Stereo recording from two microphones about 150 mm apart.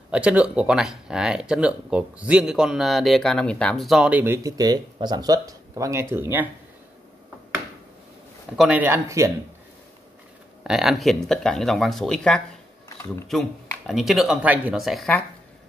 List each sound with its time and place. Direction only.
0.1 s speech: 5° right (ahead or behind)
8.5 s speech: 10° right (ahead or behind)
10.6 s speech: 5° right (ahead or behind)
13.8 s speech: centre (ahead or behind)